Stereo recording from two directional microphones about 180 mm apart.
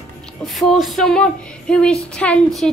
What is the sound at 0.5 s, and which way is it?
Speech, centre (ahead or behind).